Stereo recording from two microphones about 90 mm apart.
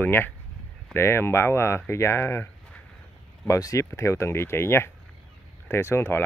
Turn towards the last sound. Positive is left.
turn(degrees=25)  # may be behind; listen again after turning